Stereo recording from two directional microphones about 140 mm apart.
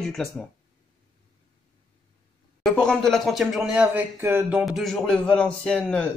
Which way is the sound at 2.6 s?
5° left (ahead or behind).